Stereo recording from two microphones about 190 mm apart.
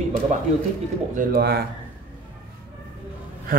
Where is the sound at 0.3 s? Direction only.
40° right (ahead or behind).